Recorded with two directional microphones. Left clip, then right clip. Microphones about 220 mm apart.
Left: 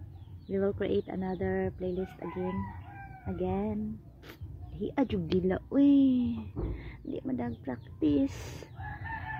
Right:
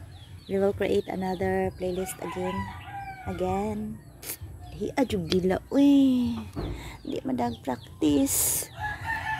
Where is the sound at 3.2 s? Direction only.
Centre (ahead or behind).